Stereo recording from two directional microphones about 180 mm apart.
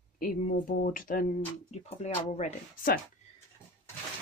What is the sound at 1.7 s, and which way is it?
Speech, 40° left (ahead or behind).